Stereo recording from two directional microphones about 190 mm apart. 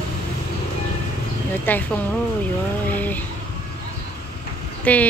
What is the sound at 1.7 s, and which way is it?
Speech, 10° left (ahead or behind).